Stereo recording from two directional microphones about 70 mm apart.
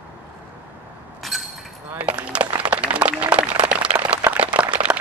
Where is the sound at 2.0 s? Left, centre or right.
Centre.